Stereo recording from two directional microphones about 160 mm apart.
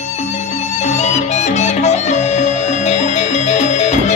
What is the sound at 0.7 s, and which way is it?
Music, 45° left (ahead or behind).